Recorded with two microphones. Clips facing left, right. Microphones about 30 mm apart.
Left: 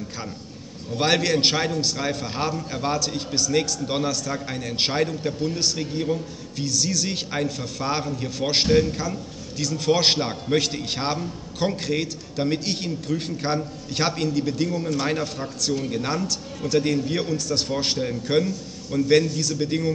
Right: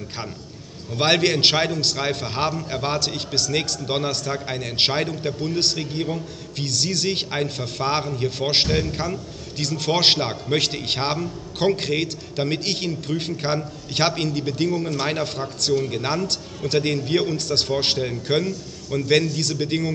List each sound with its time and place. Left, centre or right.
0.9 s a man's voice: right
2.0 s a man's voice: right
3.0 s a man's voice: right
3.8 s a man's voice: right
4.6 s a man's voice: right
4.9 s a man's voice: right
6.6 s a man's voice: right
9.6 s a man's voice: right
15.0 s a man's voice: right
16.3 s a man's voice: right